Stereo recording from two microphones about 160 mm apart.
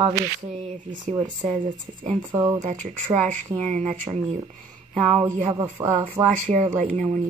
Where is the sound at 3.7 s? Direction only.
45° right (ahead or behind).